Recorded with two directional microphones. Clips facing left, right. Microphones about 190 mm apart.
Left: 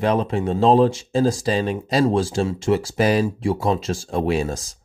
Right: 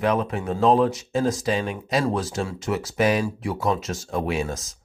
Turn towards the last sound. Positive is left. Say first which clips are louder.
# left 4 dB
turn(degrees=30)  # may be behind; listen again after turning